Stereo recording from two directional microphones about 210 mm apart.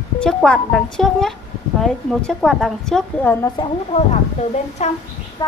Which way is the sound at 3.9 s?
30° left (ahead or behind).